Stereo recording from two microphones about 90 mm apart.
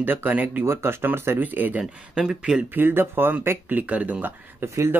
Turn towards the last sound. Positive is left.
turn(degrees=-20)  # may be behind; listen again after turning